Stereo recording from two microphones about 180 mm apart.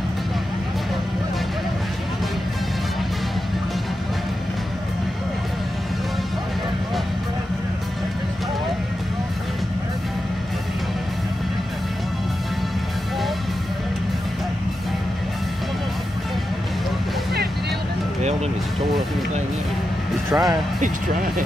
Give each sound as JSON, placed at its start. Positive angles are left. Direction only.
{"t": 20.2, "sound": "speech", "side_deg": -20}